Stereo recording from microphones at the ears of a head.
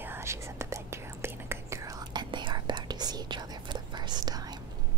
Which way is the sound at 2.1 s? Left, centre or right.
Right.